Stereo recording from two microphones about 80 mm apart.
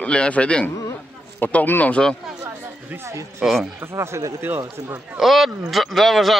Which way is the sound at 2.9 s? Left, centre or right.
Right.